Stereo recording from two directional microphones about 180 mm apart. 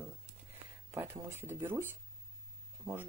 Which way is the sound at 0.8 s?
10° right (ahead or behind).